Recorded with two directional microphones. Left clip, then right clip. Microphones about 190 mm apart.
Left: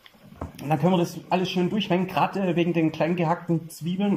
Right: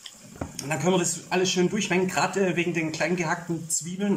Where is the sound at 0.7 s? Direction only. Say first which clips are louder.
Left 1 dB; 15° left (ahead or behind).